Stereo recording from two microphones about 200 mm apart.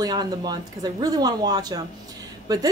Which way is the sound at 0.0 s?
20° right (ahead or behind).